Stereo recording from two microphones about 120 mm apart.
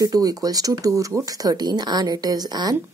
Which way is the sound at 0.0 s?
30° right (ahead or behind).